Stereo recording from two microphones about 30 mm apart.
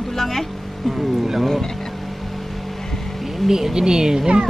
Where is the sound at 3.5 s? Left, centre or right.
Centre.